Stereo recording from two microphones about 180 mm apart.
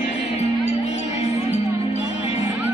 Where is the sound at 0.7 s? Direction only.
40° left (ahead or behind).